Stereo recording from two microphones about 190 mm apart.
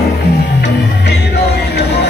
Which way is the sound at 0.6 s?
60° left (ahead or behind).